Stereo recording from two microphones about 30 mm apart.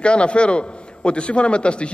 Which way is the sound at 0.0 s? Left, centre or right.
Left.